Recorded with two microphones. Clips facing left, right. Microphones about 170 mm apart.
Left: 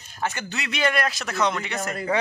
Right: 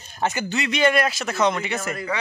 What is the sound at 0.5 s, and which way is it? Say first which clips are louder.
A man's voice: right 5 dB; centre (ahead or behind).